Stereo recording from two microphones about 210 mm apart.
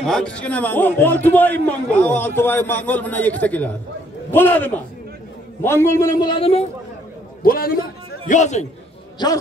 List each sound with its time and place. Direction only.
0.0 s a man's voice: 5° left (ahead or behind); by 6.6 s 25° left (ahead or behind)
7.4 s a man's voice: 45° left (ahead or behind)